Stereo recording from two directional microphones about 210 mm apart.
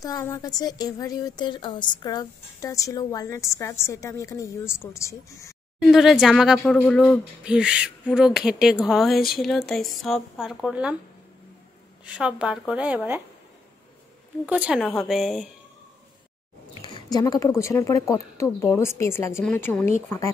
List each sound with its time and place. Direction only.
0.0 s a woman's voice: 15° left (ahead or behind)
5.9 s speech: centre (ahead or behind)
12.1 s speech: 5° right (ahead or behind)
14.4 s speech: 5° right (ahead or behind)
16.8 s a woman's voice: 20° left (ahead or behind)